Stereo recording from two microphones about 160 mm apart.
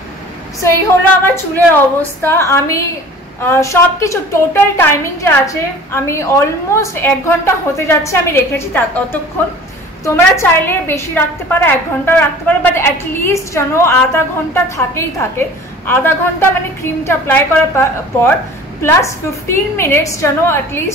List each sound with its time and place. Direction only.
1.2 s a woman's voice: 10° left (ahead or behind)
10.0 s a woman's voice: 15° left (ahead or behind)